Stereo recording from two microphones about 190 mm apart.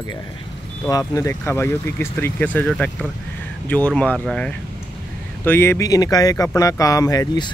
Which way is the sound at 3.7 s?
5° left (ahead or behind).